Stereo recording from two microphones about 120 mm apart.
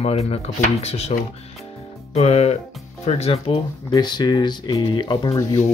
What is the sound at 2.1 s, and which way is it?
Speech, 65° left (ahead or behind).